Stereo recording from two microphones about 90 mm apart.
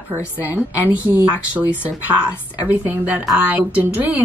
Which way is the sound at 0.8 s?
20° right (ahead or behind).